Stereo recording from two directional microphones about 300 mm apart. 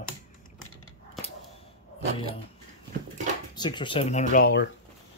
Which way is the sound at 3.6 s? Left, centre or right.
Centre.